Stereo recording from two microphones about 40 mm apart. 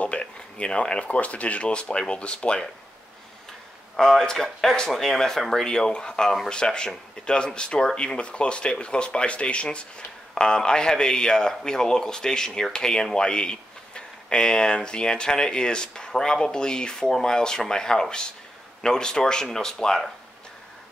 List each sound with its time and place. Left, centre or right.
0.0 s speech: left
3.9 s speech: centre
6.5 s speech: left